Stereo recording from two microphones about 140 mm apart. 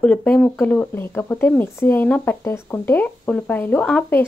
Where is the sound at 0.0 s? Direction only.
10° left (ahead or behind).